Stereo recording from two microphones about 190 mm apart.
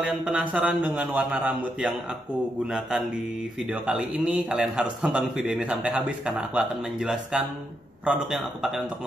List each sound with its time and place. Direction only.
0.0 s a man's voice: 5° right (ahead or behind)
3.7 s a man's voice: 5° right (ahead or behind)